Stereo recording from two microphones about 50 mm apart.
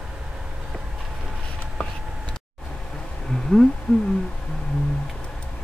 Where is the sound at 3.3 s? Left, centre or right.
Centre.